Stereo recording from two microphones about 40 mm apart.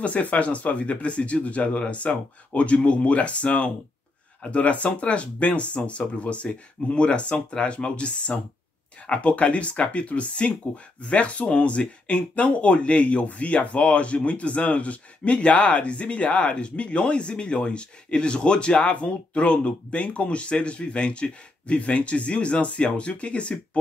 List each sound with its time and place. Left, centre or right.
0.0 s speech: left